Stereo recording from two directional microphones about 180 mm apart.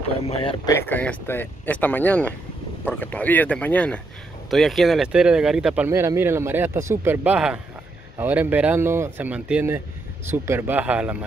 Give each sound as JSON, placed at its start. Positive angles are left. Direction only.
{"t": 0.4, "sound": "speech", "side_deg": 30}
{"t": 0.7, "sound": "speech", "side_deg": 10}
{"t": 5.9, "sound": "speech", "side_deg": -15}